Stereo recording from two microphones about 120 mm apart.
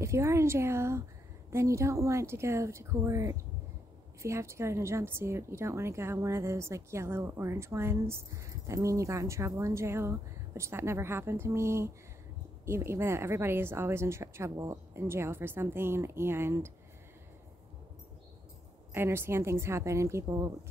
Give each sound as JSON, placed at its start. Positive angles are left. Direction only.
{"t": 0.0, "sound": "speech", "side_deg": -25}
{"t": 18.9, "sound": "speech", "side_deg": -20}